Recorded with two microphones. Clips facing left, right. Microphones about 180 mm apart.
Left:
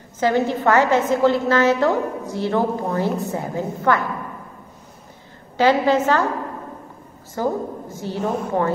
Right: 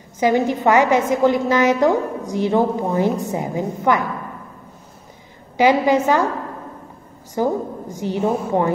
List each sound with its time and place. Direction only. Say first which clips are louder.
0.2 s a woman's voice: right 2 dB; 15° right (ahead or behind)
5.6 s a woman's voice: right 1 dB; 15° right (ahead or behind)
7.4 s a woman's voice: right 3 dB; 15° right (ahead or behind)